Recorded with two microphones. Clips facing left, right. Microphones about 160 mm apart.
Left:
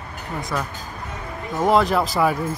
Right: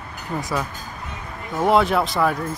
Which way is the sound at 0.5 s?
5° right (ahead or behind).